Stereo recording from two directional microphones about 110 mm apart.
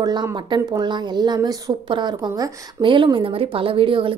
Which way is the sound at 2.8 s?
45° right (ahead or behind).